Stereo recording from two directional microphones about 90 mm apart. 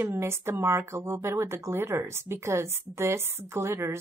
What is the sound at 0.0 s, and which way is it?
Speech, 30° right (ahead or behind).